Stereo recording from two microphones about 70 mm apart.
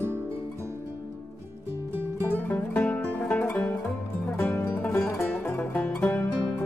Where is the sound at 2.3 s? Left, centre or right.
Left.